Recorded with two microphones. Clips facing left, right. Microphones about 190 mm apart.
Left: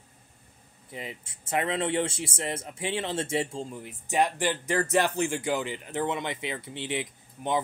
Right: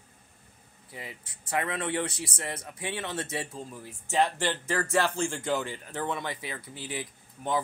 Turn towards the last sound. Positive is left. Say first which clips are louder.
# left 1 dB
turn(degrees=20)  # may be behind; listen again after turning